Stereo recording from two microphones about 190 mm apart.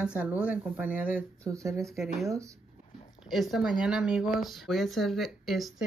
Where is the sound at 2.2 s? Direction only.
15° right (ahead or behind).